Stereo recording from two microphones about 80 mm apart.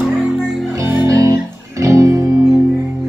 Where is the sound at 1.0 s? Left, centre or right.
Right.